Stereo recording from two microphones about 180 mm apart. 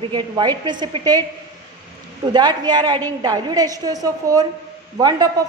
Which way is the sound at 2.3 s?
25° right (ahead or behind).